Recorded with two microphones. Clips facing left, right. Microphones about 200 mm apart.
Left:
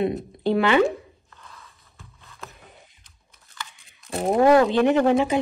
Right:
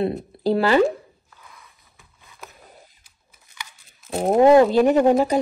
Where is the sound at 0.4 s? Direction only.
35° right (ahead or behind).